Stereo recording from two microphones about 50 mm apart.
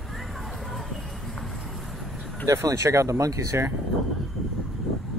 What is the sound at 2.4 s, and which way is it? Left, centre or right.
Speech, right.